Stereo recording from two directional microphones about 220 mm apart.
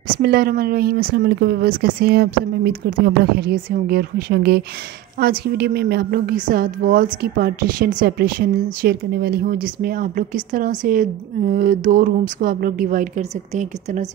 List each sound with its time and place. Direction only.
0.2 s a woman's voice: 45° right (ahead or behind)